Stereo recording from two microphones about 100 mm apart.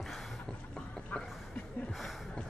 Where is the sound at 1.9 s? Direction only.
Centre (ahead or behind).